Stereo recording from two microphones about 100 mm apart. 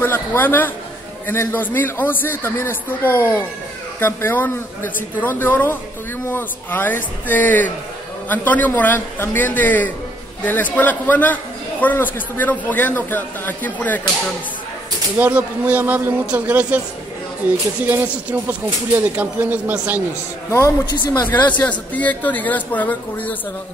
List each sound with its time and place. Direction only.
0.0 s a man's voice: 20° left (ahead or behind)
15.1 s speech: 20° right (ahead or behind)
20.4 s a man's voice: 30° left (ahead or behind)
20.8 s speech: 45° left (ahead or behind)
21.5 s a man's voice: 15° left (ahead or behind)